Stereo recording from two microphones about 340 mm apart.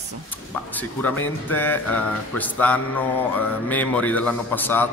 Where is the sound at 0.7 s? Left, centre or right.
Centre.